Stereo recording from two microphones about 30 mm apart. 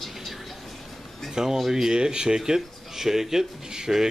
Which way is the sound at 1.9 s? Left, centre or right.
Right.